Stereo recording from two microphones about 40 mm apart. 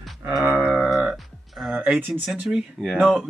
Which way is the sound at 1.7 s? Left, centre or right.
Right.